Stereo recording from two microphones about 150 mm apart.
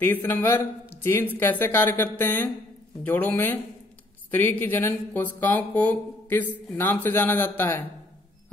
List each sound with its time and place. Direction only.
0.0 s speech: 15° left (ahead or behind)